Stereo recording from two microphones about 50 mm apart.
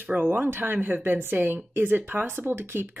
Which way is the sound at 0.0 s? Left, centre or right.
Right.